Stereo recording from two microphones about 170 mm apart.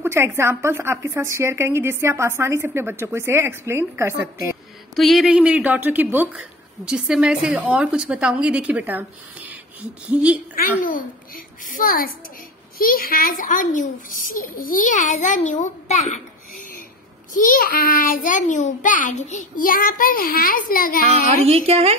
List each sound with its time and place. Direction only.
0.0 s a woman's voice: 15° right (ahead or behind)
4.9 s a woman's voice: centre (ahead or behind)
10.6 s a child's voice: 55° left (ahead or behind)
17.3 s a child's voice: 50° left (ahead or behind)
21.5 s speech: 35° right (ahead or behind)